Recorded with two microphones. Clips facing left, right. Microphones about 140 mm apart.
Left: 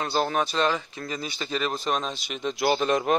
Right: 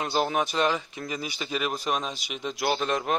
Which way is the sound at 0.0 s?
10° right (ahead or behind).